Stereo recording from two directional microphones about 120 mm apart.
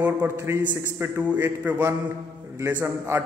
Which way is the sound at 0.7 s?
15° right (ahead or behind).